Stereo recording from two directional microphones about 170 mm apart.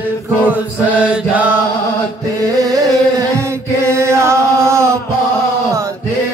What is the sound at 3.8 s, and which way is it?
Chant, 15° right (ahead or behind).